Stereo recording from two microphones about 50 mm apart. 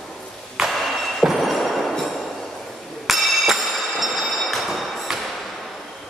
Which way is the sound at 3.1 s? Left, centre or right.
Centre.